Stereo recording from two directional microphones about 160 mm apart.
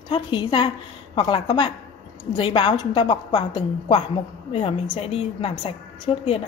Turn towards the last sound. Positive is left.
turn(degrees=35)  # may be behind; listen again after turning